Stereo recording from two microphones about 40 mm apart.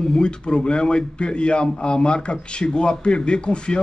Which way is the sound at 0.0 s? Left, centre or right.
Centre.